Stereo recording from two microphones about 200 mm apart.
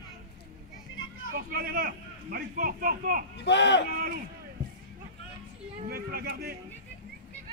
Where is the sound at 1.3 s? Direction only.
50° right (ahead or behind).